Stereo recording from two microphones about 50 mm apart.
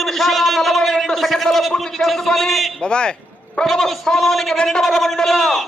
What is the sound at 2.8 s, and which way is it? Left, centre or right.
Speech, centre.